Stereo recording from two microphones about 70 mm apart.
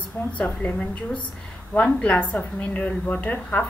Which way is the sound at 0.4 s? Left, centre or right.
Centre.